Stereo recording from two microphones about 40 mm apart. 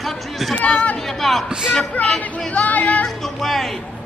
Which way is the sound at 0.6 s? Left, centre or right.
Left.